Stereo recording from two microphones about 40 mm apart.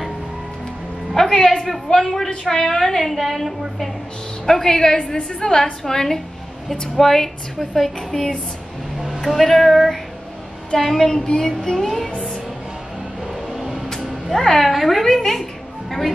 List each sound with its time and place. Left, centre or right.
1.1 s a woman's voice: centre
8.1 s a woman's voice: centre
9.2 s a woman's voice: centre
14.3 s a woman's voice: centre